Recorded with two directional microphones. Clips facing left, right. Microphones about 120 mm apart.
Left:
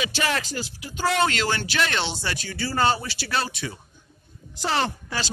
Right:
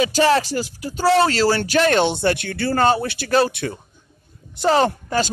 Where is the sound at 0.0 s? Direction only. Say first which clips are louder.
Right 10 dB; 35° right (ahead or behind); by 3.7 s 55° right (ahead or behind).